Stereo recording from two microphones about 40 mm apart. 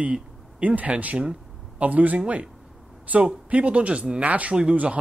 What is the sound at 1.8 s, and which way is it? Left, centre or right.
Speech, right.